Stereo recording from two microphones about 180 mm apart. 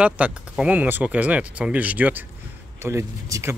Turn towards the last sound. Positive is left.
turn(degrees=-15)  # may be behind; listen again after turning